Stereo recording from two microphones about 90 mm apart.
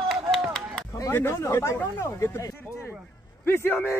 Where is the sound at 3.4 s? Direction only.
25° left (ahead or behind).